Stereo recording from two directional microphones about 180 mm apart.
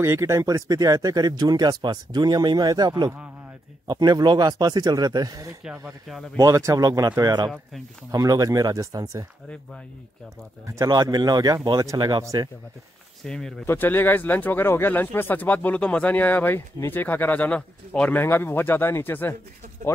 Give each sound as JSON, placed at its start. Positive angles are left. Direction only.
{"t": 0.0, "sound": "speech", "side_deg": -15}
{"t": 5.6, "sound": "speech", "side_deg": -5}
{"t": 6.3, "sound": "speech", "side_deg": -15}
{"t": 10.7, "sound": "speech", "side_deg": -20}
{"t": 13.2, "sound": "speech", "side_deg": 5}